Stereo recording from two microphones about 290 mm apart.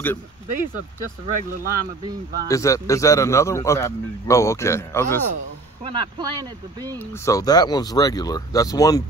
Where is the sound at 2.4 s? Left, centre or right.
Centre.